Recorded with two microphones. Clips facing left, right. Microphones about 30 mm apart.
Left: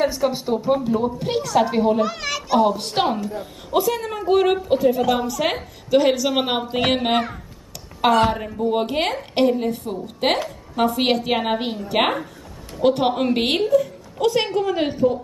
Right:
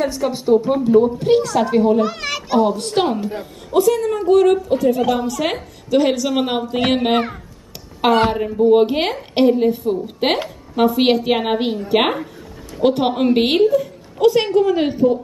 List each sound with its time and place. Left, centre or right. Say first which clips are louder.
0.0 s a woman's voice: right 1 dB; centre
2.0 s a woman's voice: right 1 dB; centre
2.6 s a woman's voice: right 3 dB; centre; by 4.8 s left
5.1 s a woman's voice: right 1 dB; centre